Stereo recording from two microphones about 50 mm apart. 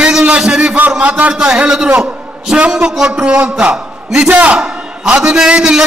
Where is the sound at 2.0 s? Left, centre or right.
Centre.